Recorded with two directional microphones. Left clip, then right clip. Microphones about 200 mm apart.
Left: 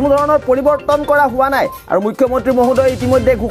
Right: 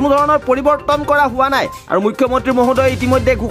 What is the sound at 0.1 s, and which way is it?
Speech, 25° right (ahead or behind).